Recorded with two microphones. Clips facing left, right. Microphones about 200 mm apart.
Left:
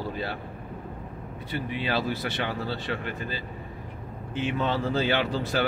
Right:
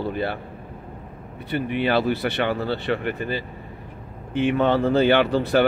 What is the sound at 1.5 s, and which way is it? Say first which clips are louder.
Speech: right 7 dB; 60° right (ahead or behind).